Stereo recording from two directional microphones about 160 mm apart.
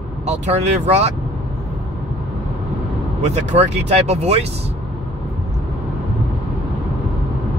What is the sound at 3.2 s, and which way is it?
Speech, 45° right (ahead or behind).